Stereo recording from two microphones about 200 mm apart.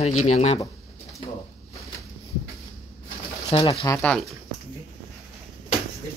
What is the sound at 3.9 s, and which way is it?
Speech, 5° left (ahead or behind).